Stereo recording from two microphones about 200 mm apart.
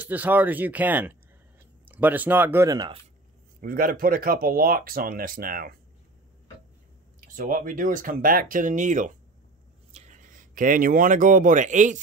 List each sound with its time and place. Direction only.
0.0 s speech: 10° right (ahead or behind)
3.6 s speech: 45° right (ahead or behind)
7.2 s speech: 40° right (ahead or behind)